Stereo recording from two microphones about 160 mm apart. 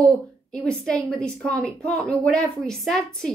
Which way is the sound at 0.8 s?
5° left (ahead or behind).